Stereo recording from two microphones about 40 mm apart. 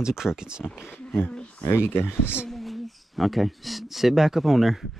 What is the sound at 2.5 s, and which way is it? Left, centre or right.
Speech, centre.